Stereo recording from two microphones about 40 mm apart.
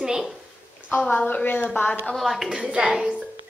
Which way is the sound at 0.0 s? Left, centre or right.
Centre.